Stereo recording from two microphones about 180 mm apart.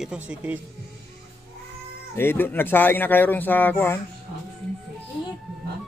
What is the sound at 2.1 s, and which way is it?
Speech, 10° left (ahead or behind).